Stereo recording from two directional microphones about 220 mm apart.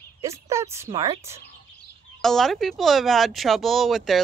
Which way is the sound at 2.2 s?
Centre (ahead or behind).